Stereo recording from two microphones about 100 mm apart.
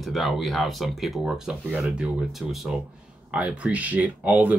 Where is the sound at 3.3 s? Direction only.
10° right (ahead or behind).